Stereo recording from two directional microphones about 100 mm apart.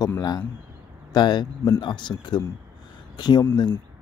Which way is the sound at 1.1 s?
45° left (ahead or behind).